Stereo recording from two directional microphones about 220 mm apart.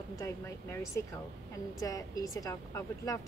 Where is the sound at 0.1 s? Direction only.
15° left (ahead or behind).